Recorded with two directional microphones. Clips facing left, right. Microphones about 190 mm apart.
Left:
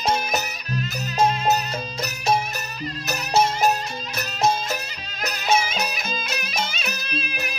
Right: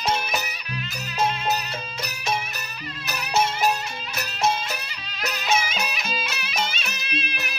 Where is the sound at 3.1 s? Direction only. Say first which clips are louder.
Left 3 dB; 40° left (ahead or behind).